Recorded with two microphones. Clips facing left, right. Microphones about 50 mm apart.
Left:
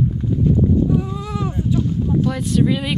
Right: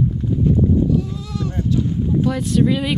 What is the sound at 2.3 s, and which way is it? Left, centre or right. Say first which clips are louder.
Speech: right 2 dB; centre.